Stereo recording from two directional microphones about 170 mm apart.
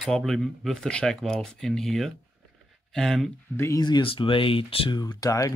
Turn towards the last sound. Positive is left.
turn(degrees=20)  # may be behind; listen again after turning